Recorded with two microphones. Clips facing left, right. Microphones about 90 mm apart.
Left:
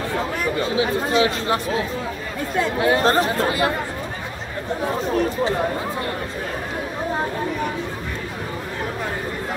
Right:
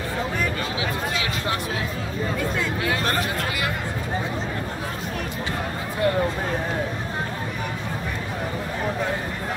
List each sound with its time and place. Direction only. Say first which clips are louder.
0.6 s speech: left 6 dB; 30° left (ahead or behind)